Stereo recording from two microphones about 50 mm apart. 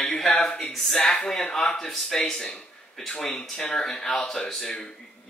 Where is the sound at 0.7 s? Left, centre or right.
Centre.